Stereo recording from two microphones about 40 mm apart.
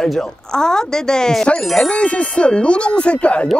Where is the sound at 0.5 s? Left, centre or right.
Centre.